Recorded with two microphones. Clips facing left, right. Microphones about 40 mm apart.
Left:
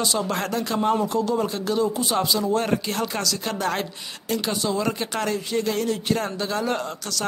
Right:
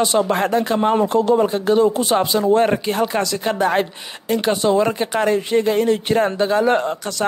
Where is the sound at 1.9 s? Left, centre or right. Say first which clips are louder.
Right 6 dB; right.